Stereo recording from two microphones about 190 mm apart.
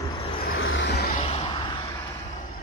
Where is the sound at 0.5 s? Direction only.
85° left; by 1.1 s 65° left (ahead or behind).